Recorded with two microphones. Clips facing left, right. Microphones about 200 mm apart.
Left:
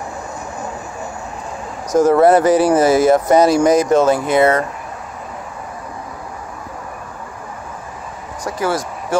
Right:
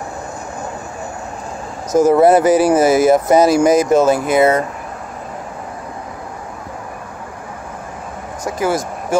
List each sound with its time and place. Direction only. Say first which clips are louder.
1.9 s speech: right 1 dB; 5° right (ahead or behind)
8.5 s speech: right 2 dB; 20° right (ahead or behind)